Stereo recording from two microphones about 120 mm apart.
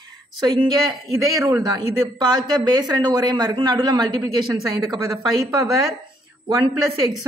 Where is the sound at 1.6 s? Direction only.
35° right (ahead or behind).